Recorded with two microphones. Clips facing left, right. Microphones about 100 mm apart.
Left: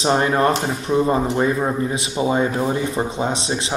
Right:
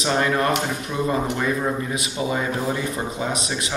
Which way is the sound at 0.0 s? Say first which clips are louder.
Left 4 dB; 30° left (ahead or behind).